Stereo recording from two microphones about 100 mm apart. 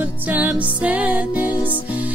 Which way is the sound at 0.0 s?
15° right (ahead or behind).